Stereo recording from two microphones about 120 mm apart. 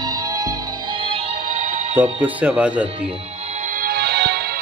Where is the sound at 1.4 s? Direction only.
75° right (ahead or behind).